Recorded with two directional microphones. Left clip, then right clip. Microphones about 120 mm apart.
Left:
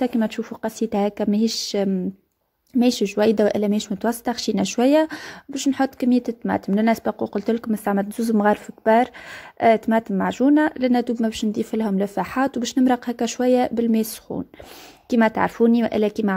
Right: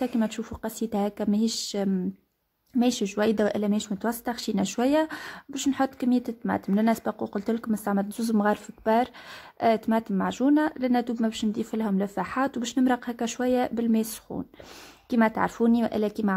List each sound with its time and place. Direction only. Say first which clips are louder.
0.0 s a woman's voice: left 5 dB; 25° left (ahead or behind)